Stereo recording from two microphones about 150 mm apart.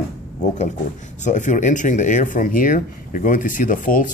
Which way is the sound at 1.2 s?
55° left (ahead or behind).